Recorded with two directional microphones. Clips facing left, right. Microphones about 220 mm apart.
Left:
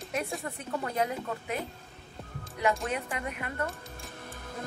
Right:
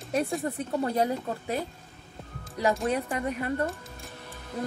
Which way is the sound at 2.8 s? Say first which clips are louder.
Right 6 dB; 35° right (ahead or behind).